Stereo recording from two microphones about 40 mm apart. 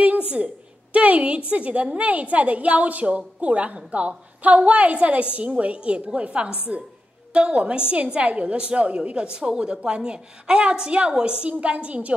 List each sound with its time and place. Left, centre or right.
0.9 s a woman's voice: right